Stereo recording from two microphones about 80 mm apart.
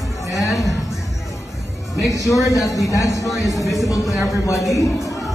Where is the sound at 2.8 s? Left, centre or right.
Left.